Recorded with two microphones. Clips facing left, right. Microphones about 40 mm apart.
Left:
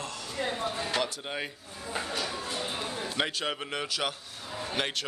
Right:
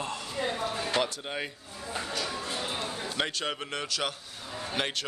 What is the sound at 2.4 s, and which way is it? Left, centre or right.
Speech, centre.